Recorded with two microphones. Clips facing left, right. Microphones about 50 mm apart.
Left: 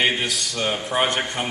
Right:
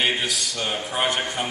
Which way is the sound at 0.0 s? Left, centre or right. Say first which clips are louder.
Left 2 dB; centre.